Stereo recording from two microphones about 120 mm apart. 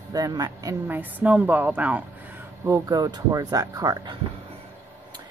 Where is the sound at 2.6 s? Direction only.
30° right (ahead or behind).